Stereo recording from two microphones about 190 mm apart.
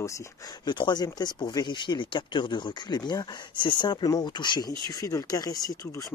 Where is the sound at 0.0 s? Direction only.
15° left (ahead or behind).